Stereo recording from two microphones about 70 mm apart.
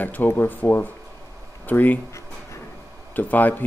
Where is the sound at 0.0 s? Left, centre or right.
Left.